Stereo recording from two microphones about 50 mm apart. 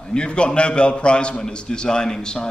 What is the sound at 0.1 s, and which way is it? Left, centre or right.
A man's voice, centre.